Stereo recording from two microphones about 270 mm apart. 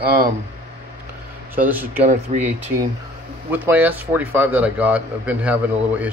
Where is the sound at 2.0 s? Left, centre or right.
Right.